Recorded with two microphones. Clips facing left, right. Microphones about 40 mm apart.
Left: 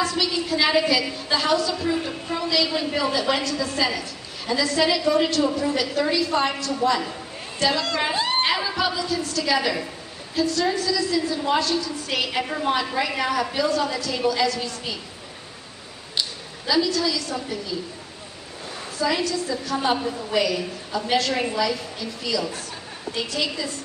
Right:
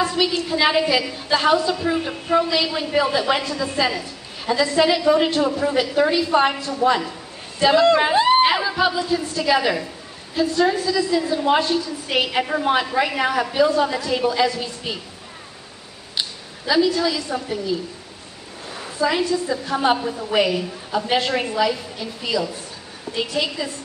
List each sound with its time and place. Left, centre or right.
0.0 s a sound: right
0.5 s a woman's voice: centre
7.0 s a sound: centre
7.6 s a woman's voice: right
16.2 s a woman's voice: right
18.9 s a woman's voice: right
20.3 s a woman's voice: right